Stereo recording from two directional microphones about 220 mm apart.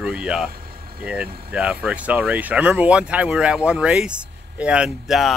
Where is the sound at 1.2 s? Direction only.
45° right (ahead or behind).